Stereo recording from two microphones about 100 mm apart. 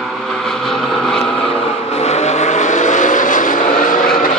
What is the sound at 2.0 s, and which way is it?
Vehicle, 90° left.